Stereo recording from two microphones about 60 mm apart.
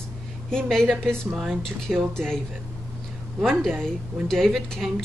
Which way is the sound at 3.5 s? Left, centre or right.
Centre.